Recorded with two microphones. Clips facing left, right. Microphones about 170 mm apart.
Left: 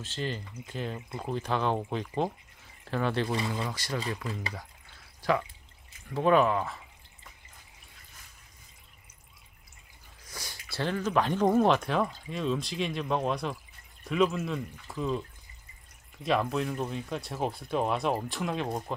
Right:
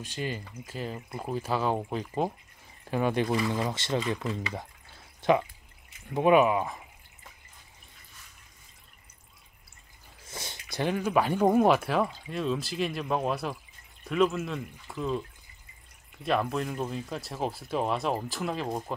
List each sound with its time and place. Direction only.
0.0 s speech: 10° right (ahead or behind)
4.6 s a sound: 20° right (ahead or behind)
6.0 s speech: 15° right (ahead or behind)
10.2 s speech: 25° right (ahead or behind); by 15.2 s centre (ahead or behind)
16.3 s speech: centre (ahead or behind)